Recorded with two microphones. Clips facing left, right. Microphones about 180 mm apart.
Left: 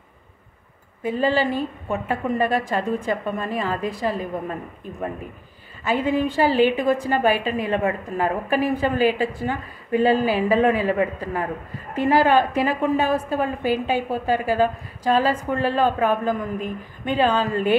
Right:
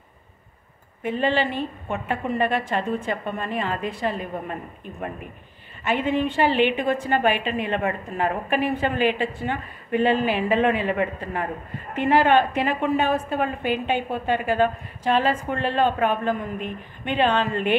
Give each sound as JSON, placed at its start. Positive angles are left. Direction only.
{"t": 1.0, "sound": "a woman's voice", "side_deg": 35}
{"t": 5.9, "sound": "a woman's voice", "side_deg": 35}